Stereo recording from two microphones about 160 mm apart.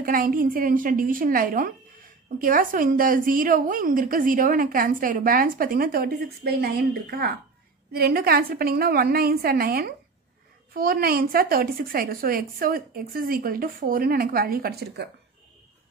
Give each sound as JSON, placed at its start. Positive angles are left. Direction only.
{"t": 0.0, "sound": "a woman's voice", "side_deg": -60}